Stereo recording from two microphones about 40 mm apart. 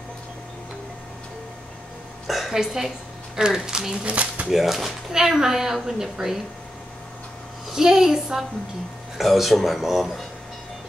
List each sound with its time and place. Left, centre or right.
2.2 s a sound: centre
2.5 s speech: centre; by 4.5 s right
4.5 s speech: centre
7.7 s speech: centre
9.2 s speech: centre